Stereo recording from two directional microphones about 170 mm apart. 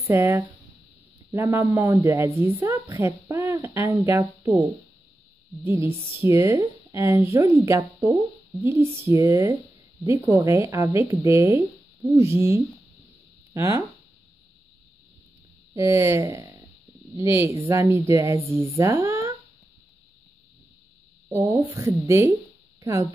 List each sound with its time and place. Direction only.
0.1 s a woman's voice: 15° right (ahead or behind)
5.9 s speech: 35° right (ahead or behind)
6.2 s a woman's voice: 15° right (ahead or behind)
8.6 s a woman's voice: 15° right (ahead or behind)
15.7 s a woman's voice: 15° right (ahead or behind)
16.3 s a sound: 25° right (ahead or behind)
17.1 s a woman's voice: 15° right (ahead or behind)
21.3 s a sound: 15° right (ahead or behind)